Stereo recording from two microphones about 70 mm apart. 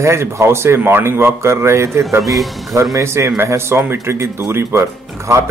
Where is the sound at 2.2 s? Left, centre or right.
Centre.